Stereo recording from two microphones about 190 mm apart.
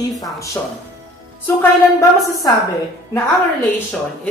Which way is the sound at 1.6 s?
15° left (ahead or behind).